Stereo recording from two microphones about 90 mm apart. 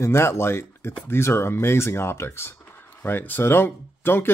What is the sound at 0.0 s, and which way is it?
Speech, 30° left (ahead or behind).